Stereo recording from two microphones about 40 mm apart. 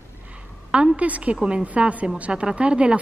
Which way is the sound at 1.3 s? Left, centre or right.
Right.